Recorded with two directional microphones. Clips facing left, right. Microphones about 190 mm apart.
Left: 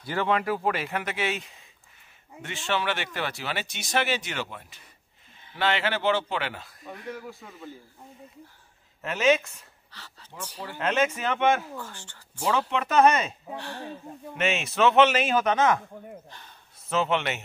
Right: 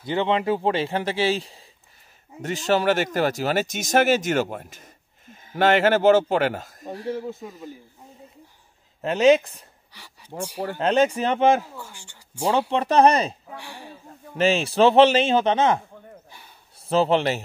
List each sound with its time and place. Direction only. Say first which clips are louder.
0.0 s a man's voice: right 4 dB; 20° right (ahead or behind)
9.0 s a man's voice: right 6 dB; 35° right (ahead or behind)
9.9 s speech: right 9 dB; 10° right (ahead or behind)
10.6 s a man's voice: right 6 dB; 35° right (ahead or behind)
11.8 s speech: left 1 dB; 10° right (ahead or behind)
12.4 s a man's voice: right 5 dB; 35° right (ahead or behind)
13.6 s speech: left 3 dB; 10° right (ahead or behind)
14.3 s a man's voice: right 7 dB; 35° right (ahead or behind)
16.3 s speech: even; 10° right (ahead or behind)
16.8 s a man's voice: right 6 dB; 35° right (ahead or behind)